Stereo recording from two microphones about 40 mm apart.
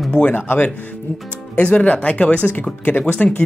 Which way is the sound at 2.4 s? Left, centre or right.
Left.